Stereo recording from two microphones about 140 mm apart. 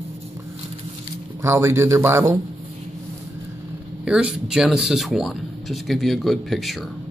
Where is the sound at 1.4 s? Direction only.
20° right (ahead or behind).